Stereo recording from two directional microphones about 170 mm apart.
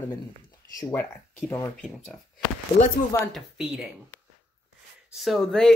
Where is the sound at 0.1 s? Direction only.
20° left (ahead or behind).